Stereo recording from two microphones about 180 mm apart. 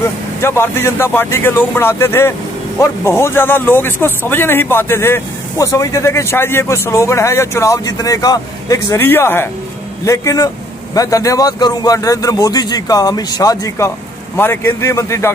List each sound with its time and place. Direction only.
0.4 s a man's voice: 15° left (ahead or behind)